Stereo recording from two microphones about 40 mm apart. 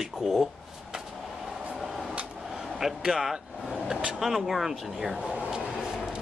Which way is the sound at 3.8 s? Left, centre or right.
Centre.